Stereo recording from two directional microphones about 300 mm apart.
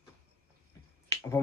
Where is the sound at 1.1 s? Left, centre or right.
Centre.